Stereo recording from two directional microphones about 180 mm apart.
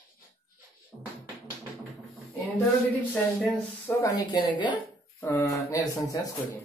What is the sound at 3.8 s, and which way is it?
Speech, 20° left (ahead or behind).